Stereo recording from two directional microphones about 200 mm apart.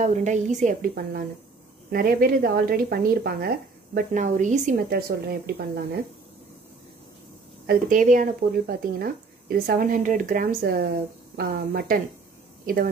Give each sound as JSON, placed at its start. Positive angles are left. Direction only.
{"t": 0.0, "sound": "a woman's voice", "side_deg": -35}
{"t": 7.6, "sound": "a woman's voice", "side_deg": -40}